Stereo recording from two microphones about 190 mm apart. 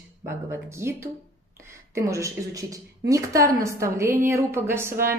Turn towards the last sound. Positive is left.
turn(degrees=-15)  # may be behind; listen again after turning